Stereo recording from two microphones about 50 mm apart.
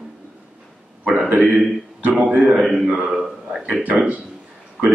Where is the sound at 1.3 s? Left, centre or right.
Right.